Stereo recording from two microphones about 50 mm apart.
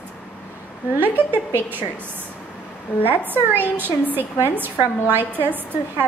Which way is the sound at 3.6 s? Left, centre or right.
Right.